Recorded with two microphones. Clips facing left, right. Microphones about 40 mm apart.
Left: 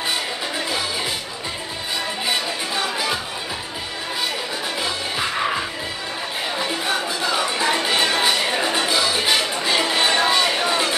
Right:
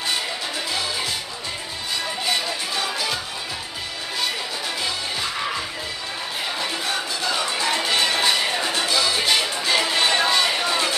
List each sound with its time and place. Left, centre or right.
2.2 s music: centre
6.6 s music: centre